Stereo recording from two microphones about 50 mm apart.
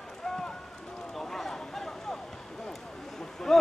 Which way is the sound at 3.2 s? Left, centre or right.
Centre.